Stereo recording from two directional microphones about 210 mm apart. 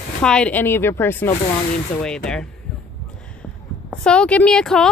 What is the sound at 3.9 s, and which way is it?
Speech, 5° left (ahead or behind).